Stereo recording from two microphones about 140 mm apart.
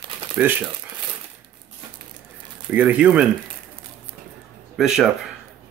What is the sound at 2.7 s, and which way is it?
Speech, 10° right (ahead or behind).